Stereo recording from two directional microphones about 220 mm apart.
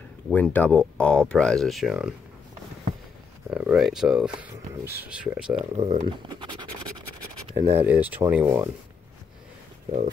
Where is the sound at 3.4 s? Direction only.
5° right (ahead or behind).